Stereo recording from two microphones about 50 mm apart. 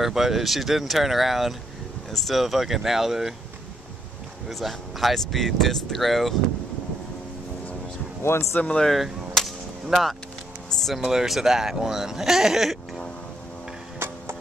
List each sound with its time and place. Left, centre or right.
0.0 s speech: centre
4.5 s speech: centre
8.2 s speech: left
8.9 s whip: centre
10.7 s music: centre
11.0 s speech: centre
13.9 s music: right